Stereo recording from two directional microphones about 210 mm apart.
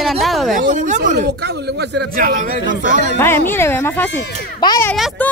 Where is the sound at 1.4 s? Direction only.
50° right (ahead or behind).